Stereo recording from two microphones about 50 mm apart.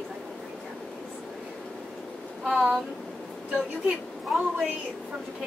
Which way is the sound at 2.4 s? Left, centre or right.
Right.